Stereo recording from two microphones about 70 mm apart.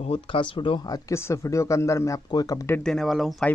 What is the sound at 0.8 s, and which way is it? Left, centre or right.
Speech, left.